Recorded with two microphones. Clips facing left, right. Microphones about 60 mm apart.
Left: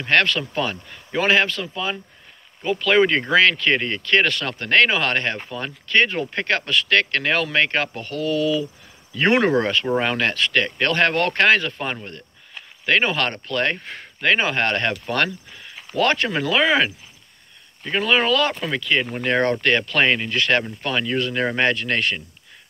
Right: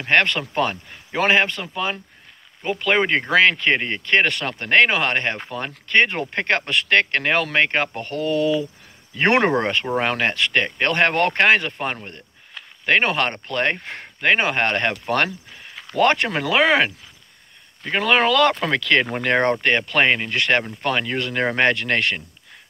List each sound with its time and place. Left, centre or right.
0.0 s speech: right
17.9 s speech: right
18.5 s speech: right
19.0 s speech: right
19.5 s speech: right